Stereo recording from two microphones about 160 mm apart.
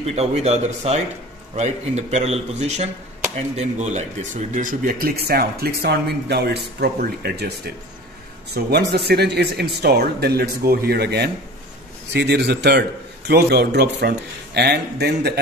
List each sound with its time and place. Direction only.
0.0 s a man's voice: 40° right (ahead or behind); by 7.7 s 85° right
8.9 s speech: 90° right